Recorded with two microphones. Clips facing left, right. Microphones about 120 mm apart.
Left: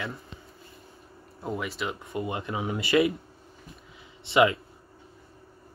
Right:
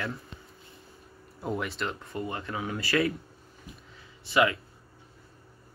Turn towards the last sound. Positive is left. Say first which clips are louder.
# left 3 dB
turn(degrees=20)  # may be behind; listen again after turning